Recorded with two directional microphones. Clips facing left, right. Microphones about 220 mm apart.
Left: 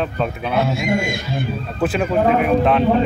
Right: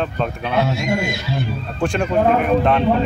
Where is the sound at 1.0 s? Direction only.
50° left (ahead or behind).